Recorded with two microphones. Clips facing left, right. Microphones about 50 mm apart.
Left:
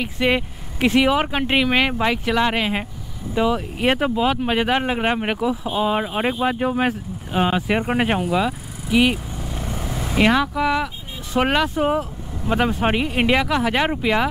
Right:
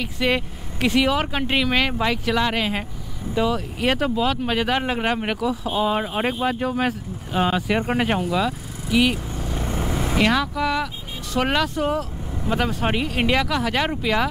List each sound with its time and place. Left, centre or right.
0.0 s speech: centre
9.4 s vehicle: centre
10.1 s speech: centre